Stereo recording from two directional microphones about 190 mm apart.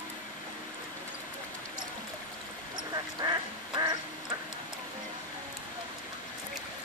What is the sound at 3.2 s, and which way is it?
Duck, 20° right (ahead or behind).